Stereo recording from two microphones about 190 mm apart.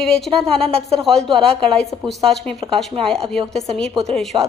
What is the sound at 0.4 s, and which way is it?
Speech, 30° right (ahead or behind).